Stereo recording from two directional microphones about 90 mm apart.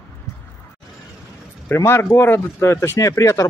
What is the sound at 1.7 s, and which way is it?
Speech, 30° left (ahead or behind).